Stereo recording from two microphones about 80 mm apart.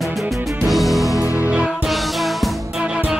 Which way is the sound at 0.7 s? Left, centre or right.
Centre.